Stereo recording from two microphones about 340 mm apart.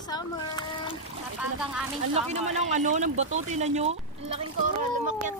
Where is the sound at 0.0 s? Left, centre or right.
Centre.